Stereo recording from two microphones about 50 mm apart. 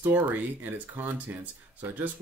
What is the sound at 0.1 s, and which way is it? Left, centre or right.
Speech, right.